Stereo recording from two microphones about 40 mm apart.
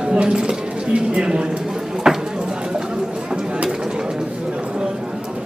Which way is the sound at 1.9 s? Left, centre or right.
Centre.